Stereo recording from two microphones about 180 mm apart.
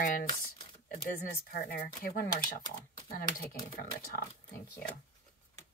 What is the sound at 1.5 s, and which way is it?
Speech, 55° left (ahead or behind).